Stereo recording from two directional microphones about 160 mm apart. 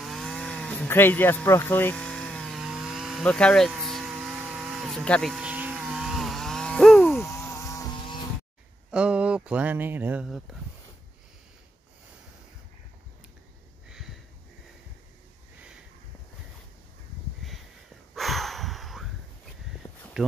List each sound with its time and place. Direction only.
0.0 s chainsaw: centre (ahead or behind)
7.2 s insect: 15° left (ahead or behind)
8.9 s speech: 5° right (ahead or behind)
13.8 s a sound: 5° right (ahead or behind)
17.4 s a sound: centre (ahead or behind)
20.2 s speech: 5° right (ahead or behind)